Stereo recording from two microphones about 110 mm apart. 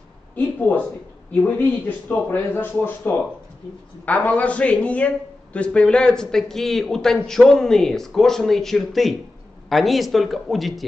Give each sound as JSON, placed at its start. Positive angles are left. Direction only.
{"t": 0.6, "sound": "a man's voice", "side_deg": 15}